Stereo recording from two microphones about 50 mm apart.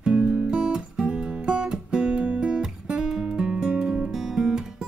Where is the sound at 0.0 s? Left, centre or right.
Centre.